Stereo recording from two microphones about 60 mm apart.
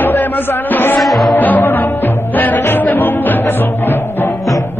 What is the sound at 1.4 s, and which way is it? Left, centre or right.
Music, left.